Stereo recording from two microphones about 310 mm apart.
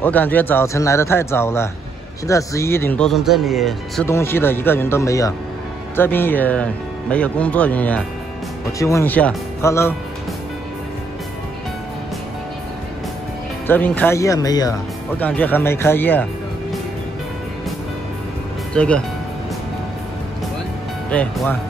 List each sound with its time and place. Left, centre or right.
0.0 s speech: centre
13.7 s speech: centre
18.7 s speech: centre
21.1 s speech: centre